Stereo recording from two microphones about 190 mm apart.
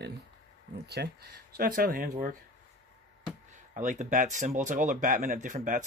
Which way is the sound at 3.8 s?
40° right (ahead or behind).